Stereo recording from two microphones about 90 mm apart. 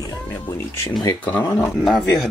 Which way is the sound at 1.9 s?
5° left (ahead or behind).